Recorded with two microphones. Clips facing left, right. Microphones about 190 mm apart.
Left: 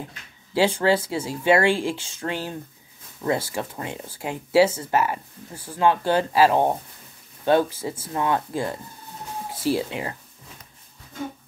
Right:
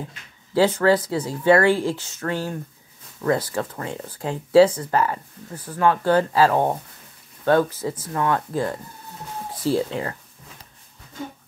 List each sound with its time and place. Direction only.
0.6 s speech: 25° left (ahead or behind)
4.1 s speech: 10° left (ahead or behind)
4.7 s speech: 20° left (ahead or behind)
9.8 s speech: 15° left (ahead or behind)